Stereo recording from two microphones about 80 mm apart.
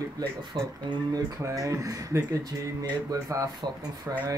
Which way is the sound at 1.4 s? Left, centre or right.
Right.